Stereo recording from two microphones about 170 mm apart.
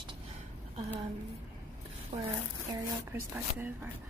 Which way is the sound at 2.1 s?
40° right (ahead or behind).